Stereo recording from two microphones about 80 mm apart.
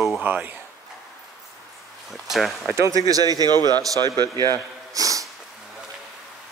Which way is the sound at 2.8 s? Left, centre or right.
Right.